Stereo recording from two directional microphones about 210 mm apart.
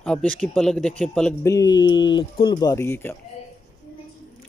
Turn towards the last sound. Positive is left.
turn(degrees=10)  # may be behind; listen again after turning